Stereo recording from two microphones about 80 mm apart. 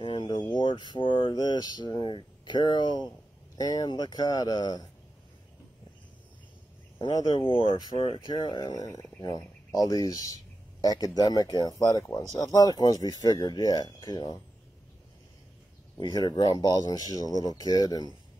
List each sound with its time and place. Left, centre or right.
0.0 s a sound: left
1.3 s speech: left
3.5 s speech: left
7.1 s speech: left
7.3 s speech: left
8.5 s speech: left
16.1 s speech: left